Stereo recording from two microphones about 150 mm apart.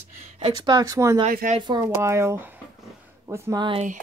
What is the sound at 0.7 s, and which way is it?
Speech, 25° right (ahead or behind).